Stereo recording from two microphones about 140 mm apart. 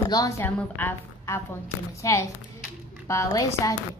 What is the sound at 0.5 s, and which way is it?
A woman's voice, 10° left (ahead or behind).